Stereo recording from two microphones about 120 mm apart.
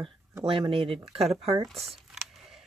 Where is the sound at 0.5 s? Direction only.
50° right (ahead or behind).